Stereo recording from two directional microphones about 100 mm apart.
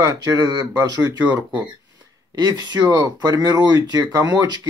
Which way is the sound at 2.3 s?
45° right (ahead or behind).